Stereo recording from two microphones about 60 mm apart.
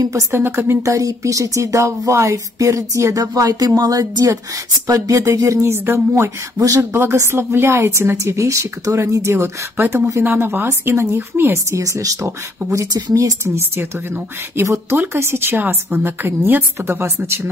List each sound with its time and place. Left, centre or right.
0.1 s speech: right
0.8 s speech: right
8.2 s a woman's voice: right
11.7 s speech: right
13.6 s a woman's voice: right
14.6 s a woman's voice: right